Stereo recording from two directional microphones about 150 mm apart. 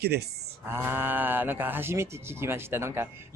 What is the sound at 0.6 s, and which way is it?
Speech, 15° right (ahead or behind).